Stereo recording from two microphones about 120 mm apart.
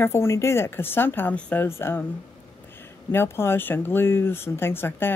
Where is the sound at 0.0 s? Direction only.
20° left (ahead or behind).